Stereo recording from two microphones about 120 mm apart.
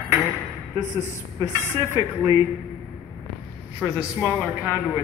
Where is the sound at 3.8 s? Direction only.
15° right (ahead or behind).